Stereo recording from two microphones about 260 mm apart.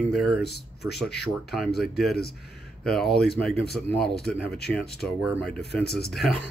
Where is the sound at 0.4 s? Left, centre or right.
Left.